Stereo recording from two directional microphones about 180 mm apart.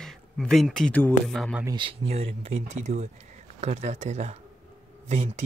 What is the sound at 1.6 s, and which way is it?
Speech, 25° right (ahead or behind).